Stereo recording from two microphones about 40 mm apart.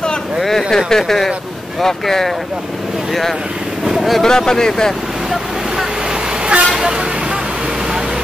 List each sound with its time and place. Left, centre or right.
0.4 s speech: centre
3.8 s vehicle: centre
4.2 s speech: centre
6.4 s vehicle: right